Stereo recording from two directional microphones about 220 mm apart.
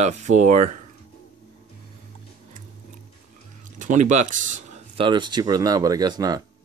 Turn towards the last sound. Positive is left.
turn(degrees=-15)  # may be behind; listen again after turning